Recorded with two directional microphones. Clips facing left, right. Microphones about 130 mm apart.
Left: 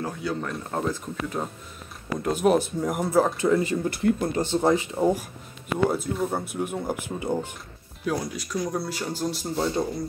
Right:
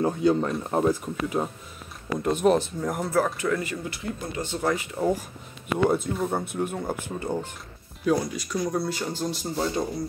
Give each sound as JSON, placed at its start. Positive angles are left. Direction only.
{"t": 0.0, "sound": "speech", "side_deg": -25}
{"t": 0.7, "sound": "speech", "side_deg": -15}
{"t": 2.2, "sound": "speech", "side_deg": 5}
{"t": 3.3, "sound": "speech", "side_deg": 30}
{"t": 4.0, "sound": "speech", "side_deg": 55}
{"t": 4.4, "sound": "speech", "side_deg": 30}
{"t": 5.9, "sound": "speech", "side_deg": 0}